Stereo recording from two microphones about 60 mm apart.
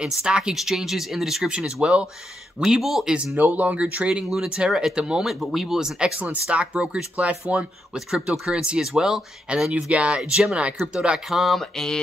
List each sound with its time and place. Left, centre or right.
0.0 s speech: centre
2.8 s a sound: centre
3.3 s speech: right
4.6 s speech: centre
6.1 s speech: right
11.2 s a sound: centre